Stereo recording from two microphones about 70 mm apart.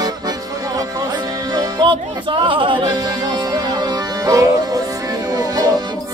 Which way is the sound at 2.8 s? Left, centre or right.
Right.